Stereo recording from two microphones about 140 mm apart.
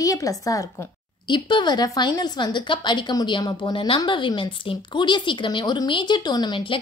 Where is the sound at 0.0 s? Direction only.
25° left (ahead or behind).